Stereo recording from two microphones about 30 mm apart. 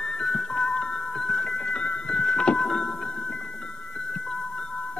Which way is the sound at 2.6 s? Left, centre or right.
Centre.